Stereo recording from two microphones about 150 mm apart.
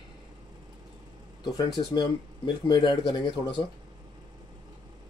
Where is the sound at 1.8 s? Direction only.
30° left (ahead or behind).